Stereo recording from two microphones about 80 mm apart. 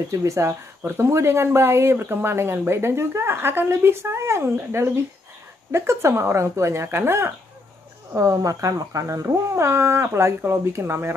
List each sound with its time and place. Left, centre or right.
0.1 s speech: right
8.1 s speech: right